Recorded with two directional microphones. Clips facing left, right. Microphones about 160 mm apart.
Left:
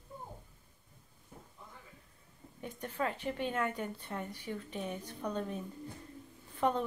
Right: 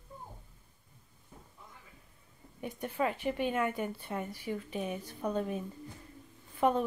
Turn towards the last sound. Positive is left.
turn(degrees=-10)  # may be behind; listen again after turning